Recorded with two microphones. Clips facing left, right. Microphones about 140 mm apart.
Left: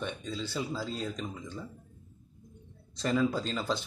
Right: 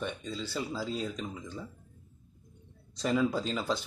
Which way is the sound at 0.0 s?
Centre (ahead or behind).